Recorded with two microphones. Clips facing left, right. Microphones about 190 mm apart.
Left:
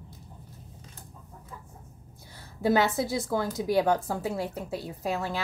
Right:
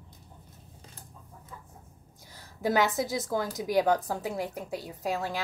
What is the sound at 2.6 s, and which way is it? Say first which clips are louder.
A woman's voice: left 2 dB; 15° right (ahead or behind).